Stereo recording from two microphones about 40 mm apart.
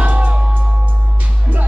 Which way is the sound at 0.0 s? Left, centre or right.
Right.